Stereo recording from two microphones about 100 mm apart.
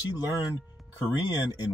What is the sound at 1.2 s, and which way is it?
Speech, 45° left (ahead or behind).